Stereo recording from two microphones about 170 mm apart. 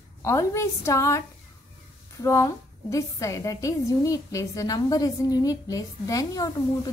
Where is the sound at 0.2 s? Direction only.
15° left (ahead or behind).